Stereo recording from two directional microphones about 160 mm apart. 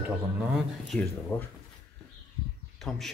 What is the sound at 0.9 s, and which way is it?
Speech, 5° left (ahead or behind).